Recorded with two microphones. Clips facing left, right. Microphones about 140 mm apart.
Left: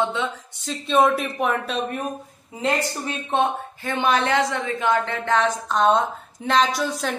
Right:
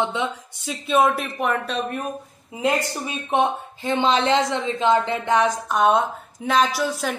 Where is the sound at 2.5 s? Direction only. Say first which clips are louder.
Right 1 dB; 10° right (ahead or behind).